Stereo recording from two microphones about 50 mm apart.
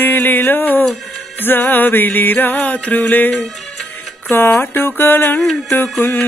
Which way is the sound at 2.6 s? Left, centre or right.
Left.